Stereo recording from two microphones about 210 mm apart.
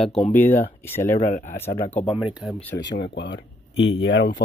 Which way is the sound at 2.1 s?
Centre (ahead or behind).